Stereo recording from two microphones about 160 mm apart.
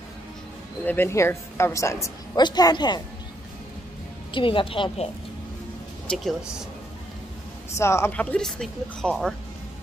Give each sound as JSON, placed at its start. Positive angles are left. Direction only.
{"t": 0.8, "sound": "a woman's voice", "side_deg": 15}
{"t": 4.3, "sound": "a woman's voice", "side_deg": 30}
{"t": 6.0, "sound": "speech", "side_deg": 0}
{"t": 7.7, "sound": "speech", "side_deg": 15}